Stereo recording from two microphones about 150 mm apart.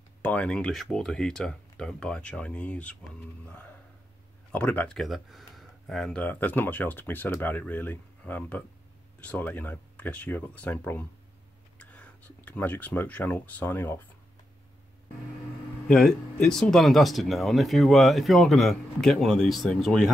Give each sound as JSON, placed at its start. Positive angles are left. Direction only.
{"t": 0.2, "sound": "speech", "side_deg": 10}
{"t": 15.9, "sound": "speech", "side_deg": 5}